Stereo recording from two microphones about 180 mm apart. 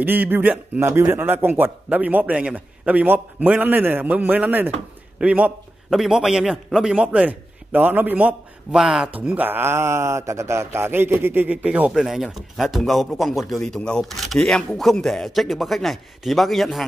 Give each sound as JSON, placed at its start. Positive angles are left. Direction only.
{"t": 0.0, "sound": "a man's voice", "side_deg": -10}